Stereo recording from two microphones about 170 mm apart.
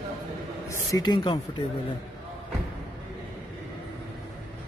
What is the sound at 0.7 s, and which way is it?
Speech, 20° left (ahead or behind).